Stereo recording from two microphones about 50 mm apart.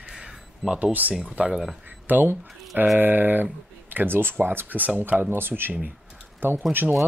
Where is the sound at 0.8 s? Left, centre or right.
Right.